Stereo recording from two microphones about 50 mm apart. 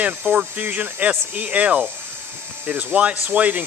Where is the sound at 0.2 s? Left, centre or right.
Right.